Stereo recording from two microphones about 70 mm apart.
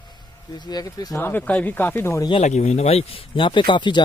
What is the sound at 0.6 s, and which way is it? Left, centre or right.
Speech, left.